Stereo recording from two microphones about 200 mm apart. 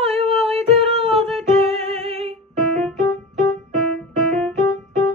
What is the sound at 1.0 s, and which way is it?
Music, 30° right (ahead or behind).